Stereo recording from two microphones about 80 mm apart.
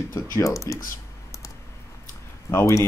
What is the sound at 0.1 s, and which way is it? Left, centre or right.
Speech, left.